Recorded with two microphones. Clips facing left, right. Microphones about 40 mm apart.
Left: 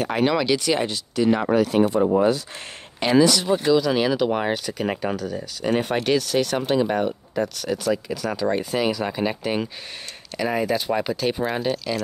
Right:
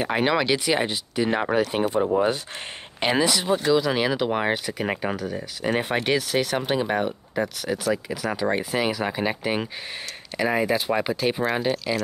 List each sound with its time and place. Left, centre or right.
0.0 s speech: centre